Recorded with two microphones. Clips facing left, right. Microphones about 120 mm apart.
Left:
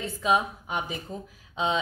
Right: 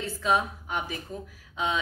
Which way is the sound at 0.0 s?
15° left (ahead or behind).